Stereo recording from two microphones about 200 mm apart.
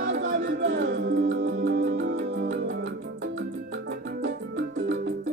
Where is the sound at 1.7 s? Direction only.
45° right (ahead or behind).